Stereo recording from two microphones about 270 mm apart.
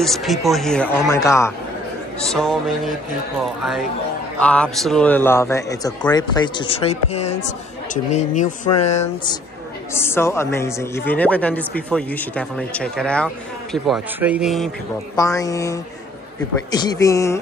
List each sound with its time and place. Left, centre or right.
0.0 s speech: centre
4.4 s a man's voice: centre; by 8.5 s left
9.9 s speech: centre
15.1 s a man's voice: centre